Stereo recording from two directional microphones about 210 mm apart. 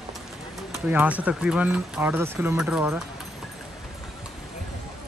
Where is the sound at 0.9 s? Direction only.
5° right (ahead or behind).